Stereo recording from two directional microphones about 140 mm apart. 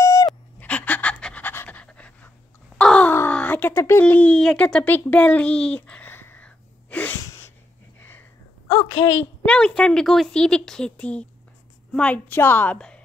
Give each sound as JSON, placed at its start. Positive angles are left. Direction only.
{"t": 0.0, "sound": "a sound", "side_deg": 25}
{"t": 0.6, "sound": "pant", "side_deg": 10}
{"t": 2.8, "sound": "sigh", "side_deg": 10}
{"t": 8.6, "sound": "a woman's voice", "side_deg": 30}
{"t": 9.4, "sound": "a woman's voice", "side_deg": 5}